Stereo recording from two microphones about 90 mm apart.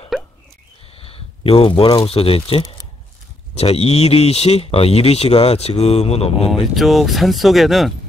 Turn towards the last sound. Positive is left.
turn(degrees=0)  # may be behind; listen again after turning